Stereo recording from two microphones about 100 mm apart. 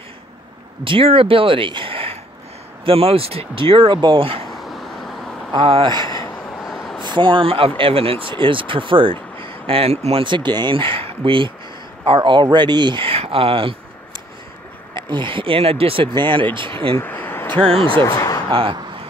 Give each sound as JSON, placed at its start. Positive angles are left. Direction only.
{"t": 0.8, "sound": "speech", "side_deg": -60}
{"t": 4.5, "sound": "a sound", "side_deg": 0}
{"t": 5.5, "sound": "speech", "side_deg": -60}
{"t": 6.6, "sound": "a sound", "side_deg": 0}
{"t": 7.0, "sound": "speech", "side_deg": -50}
{"t": 10.2, "sound": "speech", "side_deg": -50}
{"t": 15.0, "sound": "speech", "side_deg": -50}
{"t": 16.1, "sound": "speech", "side_deg": -55}
{"t": 16.9, "sound": "a sound", "side_deg": 20}
{"t": 17.6, "sound": "speech", "side_deg": -70}
{"t": 18.0, "sound": "a sound", "side_deg": 35}
{"t": 18.5, "sound": "speech", "side_deg": -60}